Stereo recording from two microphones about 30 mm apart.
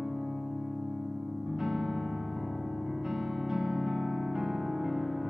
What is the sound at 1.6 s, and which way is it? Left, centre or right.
Electric piano, centre.